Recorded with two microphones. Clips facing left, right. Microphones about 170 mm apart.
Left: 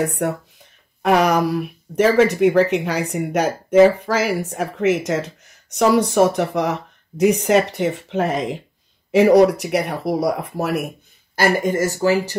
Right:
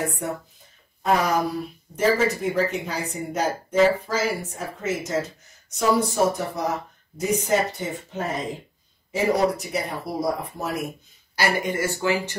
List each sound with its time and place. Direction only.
0.2 s speech: 70° left (ahead or behind)
11.3 s speech: 45° left (ahead or behind)